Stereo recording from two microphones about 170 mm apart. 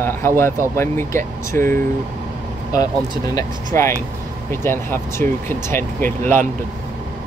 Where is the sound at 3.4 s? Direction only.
15° left (ahead or behind).